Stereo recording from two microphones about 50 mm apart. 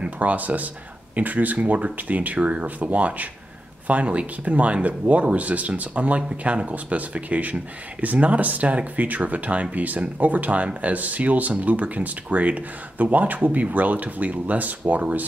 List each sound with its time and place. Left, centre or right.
0.0 s speech: right